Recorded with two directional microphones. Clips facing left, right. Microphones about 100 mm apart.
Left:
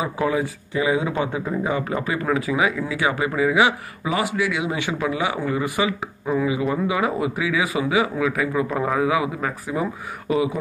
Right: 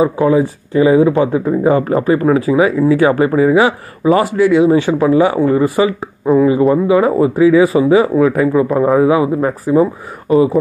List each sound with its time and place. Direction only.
0.0 s speech: 30° right (ahead or behind)
8.7 s a man's voice: 20° right (ahead or behind)
9.0 s speech: 35° right (ahead or behind)